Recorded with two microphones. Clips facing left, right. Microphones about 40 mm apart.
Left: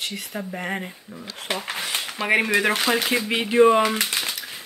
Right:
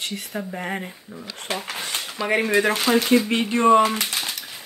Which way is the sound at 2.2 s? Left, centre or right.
Left.